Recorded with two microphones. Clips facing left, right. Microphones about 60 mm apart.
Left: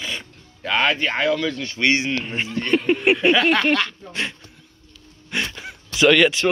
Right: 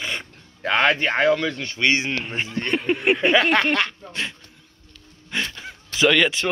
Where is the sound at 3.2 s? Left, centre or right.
Right.